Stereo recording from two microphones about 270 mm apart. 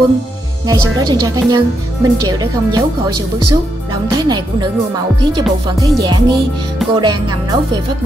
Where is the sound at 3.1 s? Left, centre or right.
Right.